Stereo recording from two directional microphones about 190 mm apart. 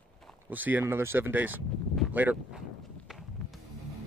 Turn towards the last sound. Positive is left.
turn(degrees=0)  # may be behind; listen again after turning